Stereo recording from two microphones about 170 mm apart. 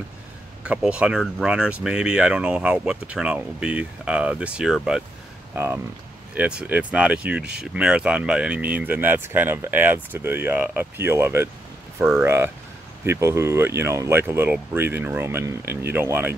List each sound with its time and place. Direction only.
0.7 s speech: 5° right (ahead or behind)
5.5 s speech: 15° right (ahead or behind)